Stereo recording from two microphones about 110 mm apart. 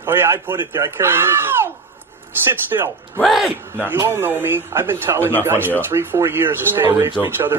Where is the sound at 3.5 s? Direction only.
20° right (ahead or behind).